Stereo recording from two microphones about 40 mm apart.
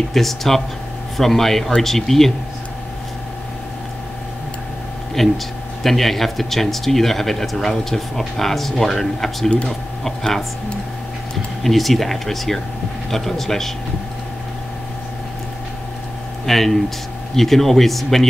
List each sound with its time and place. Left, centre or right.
0.1 s speech: centre
5.2 s speech: centre
11.6 s speech: centre
16.4 s speech: centre